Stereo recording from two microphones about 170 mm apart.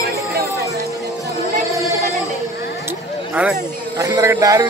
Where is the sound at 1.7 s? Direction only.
20° right (ahead or behind).